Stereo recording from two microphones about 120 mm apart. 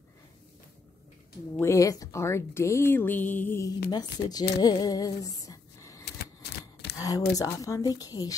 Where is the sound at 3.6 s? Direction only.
35° left (ahead or behind).